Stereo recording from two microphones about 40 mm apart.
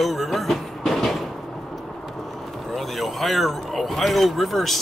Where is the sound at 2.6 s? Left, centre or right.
Centre.